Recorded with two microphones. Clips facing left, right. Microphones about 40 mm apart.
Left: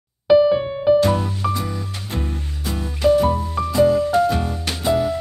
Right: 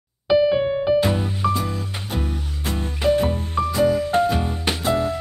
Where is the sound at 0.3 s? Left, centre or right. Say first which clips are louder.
Left 3 dB; centre.